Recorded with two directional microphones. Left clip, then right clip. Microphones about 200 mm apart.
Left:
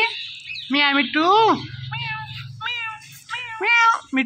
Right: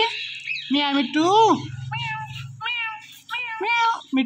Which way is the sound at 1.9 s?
35° right (ahead or behind).